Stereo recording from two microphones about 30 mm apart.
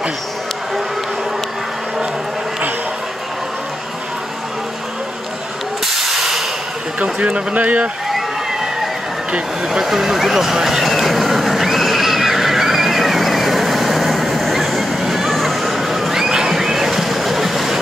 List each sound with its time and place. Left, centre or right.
6.1 s a sound: centre
7.2 s speech: right
9.8 s speech: centre
10.9 s neigh: centre
14.6 s a sound: centre
16.2 s boat: centre